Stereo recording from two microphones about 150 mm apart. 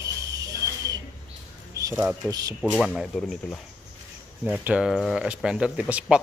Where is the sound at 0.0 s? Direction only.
20° right (ahead or behind).